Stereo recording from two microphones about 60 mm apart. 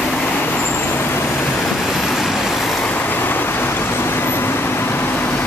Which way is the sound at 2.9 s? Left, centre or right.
Left.